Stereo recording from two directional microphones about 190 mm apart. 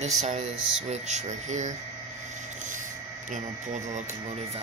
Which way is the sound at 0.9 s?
35° right (ahead or behind).